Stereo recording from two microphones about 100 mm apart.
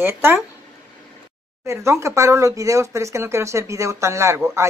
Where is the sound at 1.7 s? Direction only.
30° right (ahead or behind).